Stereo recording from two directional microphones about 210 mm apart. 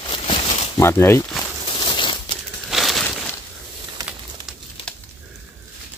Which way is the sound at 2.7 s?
Centre (ahead or behind).